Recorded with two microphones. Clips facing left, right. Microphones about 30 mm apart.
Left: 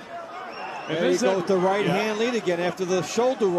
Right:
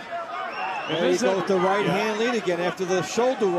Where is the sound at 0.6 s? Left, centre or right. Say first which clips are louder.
Right 2 dB; right.